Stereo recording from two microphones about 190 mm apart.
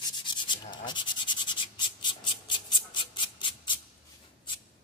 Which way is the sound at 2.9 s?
25° left (ahead or behind).